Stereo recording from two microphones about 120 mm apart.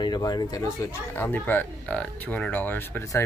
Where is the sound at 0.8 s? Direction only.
20° left (ahead or behind).